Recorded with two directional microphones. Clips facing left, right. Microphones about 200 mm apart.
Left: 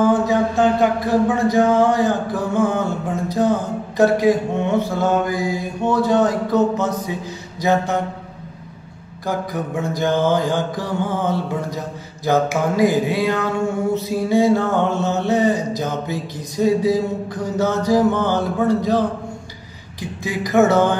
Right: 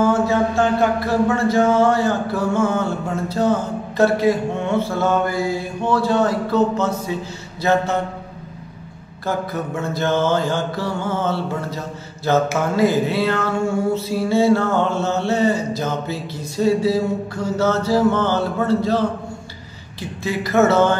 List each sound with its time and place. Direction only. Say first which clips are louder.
0.0 s speech: left 1 dB; 15° left (ahead or behind)
9.2 s speech: even; 15° left (ahead or behind)